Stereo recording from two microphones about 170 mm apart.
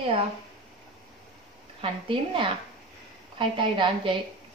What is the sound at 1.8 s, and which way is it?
A woman's voice, 30° right (ahead or behind).